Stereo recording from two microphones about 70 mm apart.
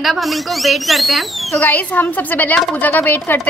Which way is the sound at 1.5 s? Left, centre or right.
Left.